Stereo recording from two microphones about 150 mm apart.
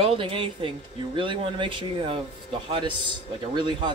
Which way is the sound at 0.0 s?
40° right (ahead or behind).